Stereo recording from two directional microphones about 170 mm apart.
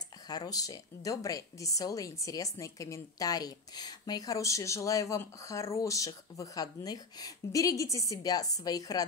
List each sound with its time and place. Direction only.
0.3 s a woman's voice: 20° left (ahead or behind)